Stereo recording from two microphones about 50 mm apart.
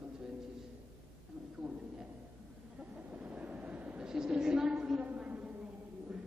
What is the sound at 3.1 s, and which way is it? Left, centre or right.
Vehicle, right.